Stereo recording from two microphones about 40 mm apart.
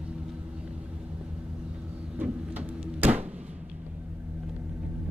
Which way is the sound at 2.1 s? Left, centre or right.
Right.